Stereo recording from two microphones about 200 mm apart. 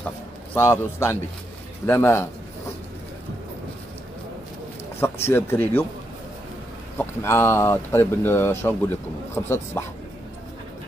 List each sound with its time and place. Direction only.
0.6 s speech: 10° left (ahead or behind)
5.0 s speech: 10° left (ahead or behind)
7.0 s speech: 10° left (ahead or behind)